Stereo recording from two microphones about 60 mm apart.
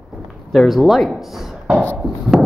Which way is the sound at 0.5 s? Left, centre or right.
Centre.